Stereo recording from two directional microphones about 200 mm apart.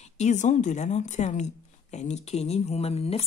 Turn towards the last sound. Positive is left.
turn(degrees=30)  # may be behind; listen again after turning